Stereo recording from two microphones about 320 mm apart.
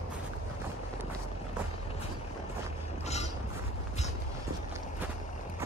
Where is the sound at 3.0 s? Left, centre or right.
Centre.